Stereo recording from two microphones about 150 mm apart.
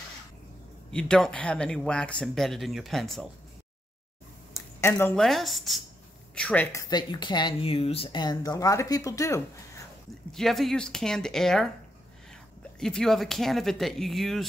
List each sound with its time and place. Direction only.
0.9 s speech: 5° left (ahead or behind)
4.6 s a sound: 15° left (ahead or behind)
5.1 s speech: centre (ahead or behind)
6.7 s speech: 25° left (ahead or behind)
10.3 s speech: centre (ahead or behind)
12.7 s speech: 5° left (ahead or behind)